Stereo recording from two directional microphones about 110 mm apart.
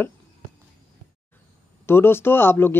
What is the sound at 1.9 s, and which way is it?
Speech, 20° left (ahead or behind).